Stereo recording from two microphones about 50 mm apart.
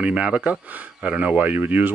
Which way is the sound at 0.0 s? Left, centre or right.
Right.